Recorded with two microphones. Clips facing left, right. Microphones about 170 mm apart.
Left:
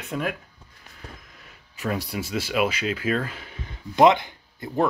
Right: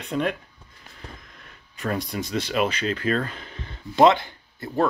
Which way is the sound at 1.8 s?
5° left (ahead or behind).